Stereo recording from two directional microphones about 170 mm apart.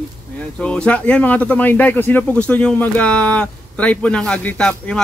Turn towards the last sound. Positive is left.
turn(degrees=5)  # may be behind; listen again after turning